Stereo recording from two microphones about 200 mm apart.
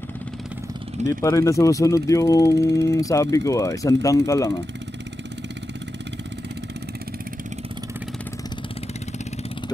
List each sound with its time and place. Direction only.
1.2 s speech: 15° left (ahead or behind)